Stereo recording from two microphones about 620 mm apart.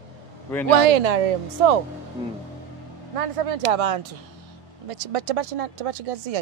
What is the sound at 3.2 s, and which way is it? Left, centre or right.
Speech, right.